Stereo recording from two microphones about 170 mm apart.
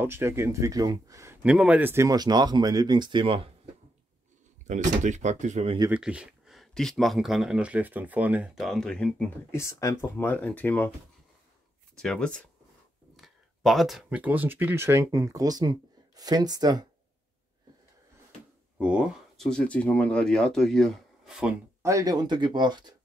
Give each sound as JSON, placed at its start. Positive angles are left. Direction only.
{"t": 0.0, "sound": "speech", "side_deg": -15}
{"t": 1.4, "sound": "speech", "side_deg": -5}
{"t": 4.6, "sound": "speech", "side_deg": -45}
{"t": 5.9, "sound": "speech", "side_deg": -5}
{"t": 9.6, "sound": "speech", "side_deg": 20}
{"t": 12.0, "sound": "speech", "side_deg": 5}
{"t": 18.8, "sound": "speech", "side_deg": -5}
{"t": 21.8, "sound": "speech", "side_deg": -20}